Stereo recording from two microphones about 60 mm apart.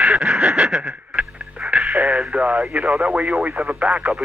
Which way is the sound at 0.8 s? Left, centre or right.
Right.